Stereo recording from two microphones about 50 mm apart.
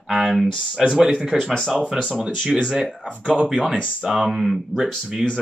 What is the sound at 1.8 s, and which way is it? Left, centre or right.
Speech, centre.